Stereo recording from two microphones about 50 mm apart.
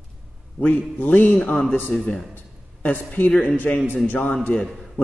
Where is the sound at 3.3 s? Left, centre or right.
Left.